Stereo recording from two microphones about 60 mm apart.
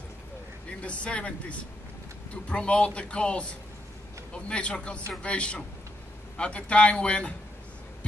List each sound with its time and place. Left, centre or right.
0.7 s speech: centre